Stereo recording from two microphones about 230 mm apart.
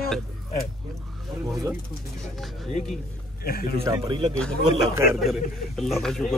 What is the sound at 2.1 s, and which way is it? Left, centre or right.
Speech, centre.